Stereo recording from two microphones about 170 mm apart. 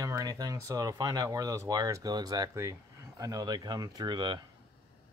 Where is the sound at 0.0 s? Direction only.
20° right (ahead or behind).